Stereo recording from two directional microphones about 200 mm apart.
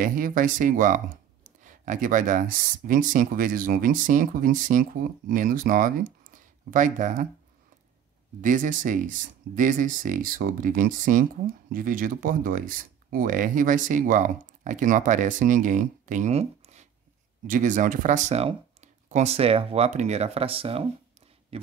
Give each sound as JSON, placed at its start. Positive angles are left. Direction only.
{"t": 0.0, "sound": "speech", "side_deg": -45}
{"t": 8.4, "sound": "speech", "side_deg": -40}